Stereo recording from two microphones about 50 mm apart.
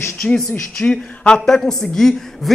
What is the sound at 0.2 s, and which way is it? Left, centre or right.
A man's voice, centre.